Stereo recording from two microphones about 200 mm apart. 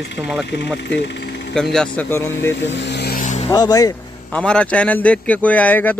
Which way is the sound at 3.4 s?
20° left (ahead or behind).